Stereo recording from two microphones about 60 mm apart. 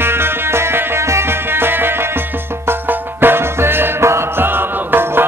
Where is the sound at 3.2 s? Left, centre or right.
Right.